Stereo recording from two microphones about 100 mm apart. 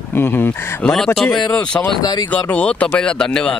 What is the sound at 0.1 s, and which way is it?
Speech, 20° left (ahead or behind).